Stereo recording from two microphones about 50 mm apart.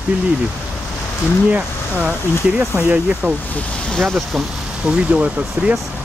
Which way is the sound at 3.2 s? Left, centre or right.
Right.